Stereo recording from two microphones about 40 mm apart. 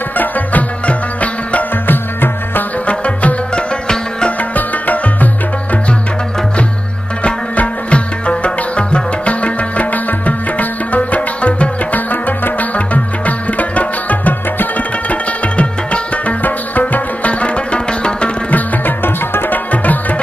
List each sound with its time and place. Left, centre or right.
0.2 s music: left
1.9 s music: left
2.9 s music: left
7.5 s music: left
12.1 s music: left
15.5 s music: left
16.4 s music: left
17.3 s music: left
18.5 s tabla: left
19.7 s tabla: left